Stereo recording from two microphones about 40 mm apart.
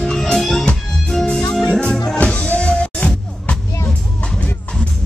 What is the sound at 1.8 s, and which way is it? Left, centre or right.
Music, centre.